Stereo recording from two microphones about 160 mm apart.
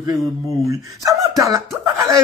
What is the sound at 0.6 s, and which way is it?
Speech, 20° right (ahead or behind).